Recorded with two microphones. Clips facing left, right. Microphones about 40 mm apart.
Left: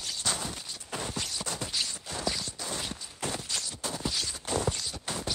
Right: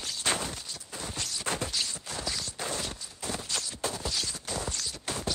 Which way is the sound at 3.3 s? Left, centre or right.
Centre.